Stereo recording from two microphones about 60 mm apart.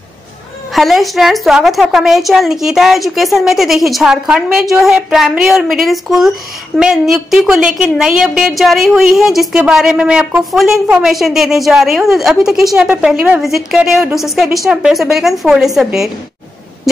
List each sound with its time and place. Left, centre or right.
0.7 s a woman's voice: centre
8.5 s a woman's voice: centre
13.1 s a woman's voice: right
13.4 s a woman's voice: centre
14.7 s a woman's voice: centre
15.0 s a woman's voice: centre